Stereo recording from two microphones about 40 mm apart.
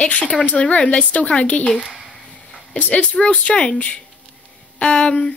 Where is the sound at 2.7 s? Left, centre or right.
Left.